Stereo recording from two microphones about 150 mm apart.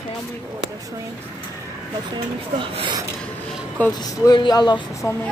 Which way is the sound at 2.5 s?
35° right (ahead or behind).